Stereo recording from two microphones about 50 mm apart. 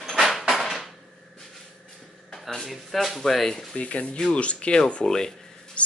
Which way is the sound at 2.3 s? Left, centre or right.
Centre.